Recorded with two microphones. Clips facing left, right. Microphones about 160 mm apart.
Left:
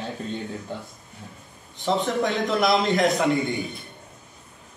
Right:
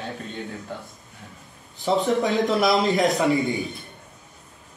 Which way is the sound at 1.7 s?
Centre (ahead or behind).